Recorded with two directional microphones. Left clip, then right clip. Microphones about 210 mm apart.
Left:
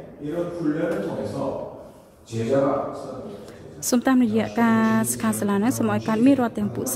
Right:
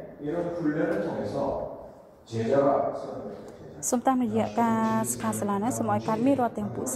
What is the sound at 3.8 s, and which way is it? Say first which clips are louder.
A woman's voice: left 4 dB; 35° left (ahead or behind).